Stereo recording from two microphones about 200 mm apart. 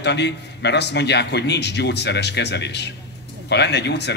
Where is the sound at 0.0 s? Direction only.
60° left (ahead or behind).